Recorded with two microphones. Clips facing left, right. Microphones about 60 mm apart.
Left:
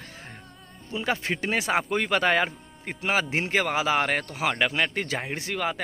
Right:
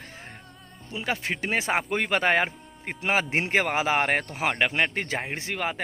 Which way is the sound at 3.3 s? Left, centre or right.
Right.